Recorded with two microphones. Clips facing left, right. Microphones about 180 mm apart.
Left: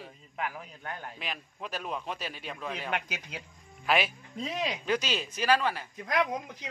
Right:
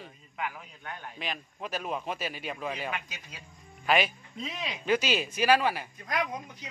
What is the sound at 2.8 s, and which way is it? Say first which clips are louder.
Speech: left 3 dB; 70° left (ahead or behind).